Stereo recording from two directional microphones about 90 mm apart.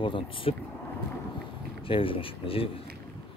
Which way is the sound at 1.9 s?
85° left.